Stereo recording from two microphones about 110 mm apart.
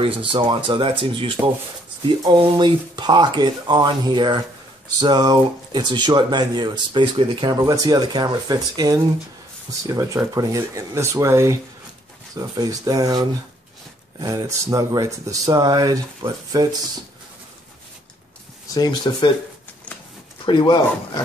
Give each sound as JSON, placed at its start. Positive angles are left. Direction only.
{"t": 0.0, "sound": "speech", "side_deg": -50}
{"t": 14.2, "sound": "speech", "side_deg": -30}
{"t": 18.7, "sound": "speech", "side_deg": 35}
{"t": 20.4, "sound": "speech", "side_deg": 45}